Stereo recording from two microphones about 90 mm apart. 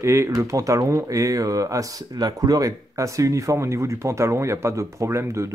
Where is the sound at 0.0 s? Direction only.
30° right (ahead or behind).